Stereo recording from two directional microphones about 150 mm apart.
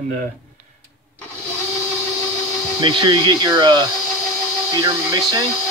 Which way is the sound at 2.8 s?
30° right (ahead or behind).